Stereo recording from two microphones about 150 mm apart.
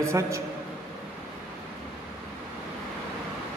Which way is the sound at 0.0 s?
20° right (ahead or behind).